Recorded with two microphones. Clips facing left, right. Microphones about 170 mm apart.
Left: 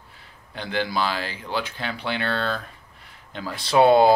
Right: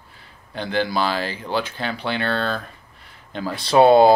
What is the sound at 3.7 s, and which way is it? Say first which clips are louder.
Speech: right 3 dB; 25° right (ahead or behind).